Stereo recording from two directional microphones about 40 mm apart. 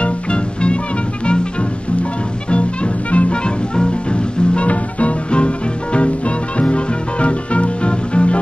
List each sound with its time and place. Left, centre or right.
0.0 s music: left